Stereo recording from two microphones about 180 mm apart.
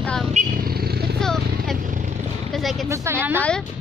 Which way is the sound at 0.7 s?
60° right (ahead or behind).